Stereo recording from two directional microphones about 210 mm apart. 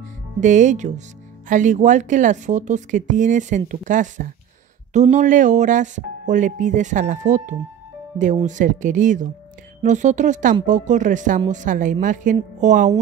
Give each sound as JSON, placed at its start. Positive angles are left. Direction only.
{"t": 0.4, "sound": "a woman's voice", "side_deg": -35}